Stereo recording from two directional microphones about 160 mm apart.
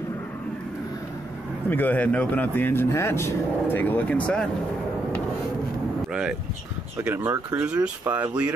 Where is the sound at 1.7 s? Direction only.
10° left (ahead or behind).